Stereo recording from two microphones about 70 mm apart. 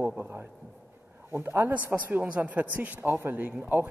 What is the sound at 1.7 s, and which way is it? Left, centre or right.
Speech, right.